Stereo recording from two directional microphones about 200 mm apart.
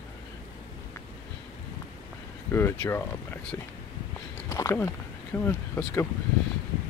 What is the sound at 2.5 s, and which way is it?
Speech, 10° left (ahead or behind).